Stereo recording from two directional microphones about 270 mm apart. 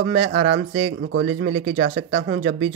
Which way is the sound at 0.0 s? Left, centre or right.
Right.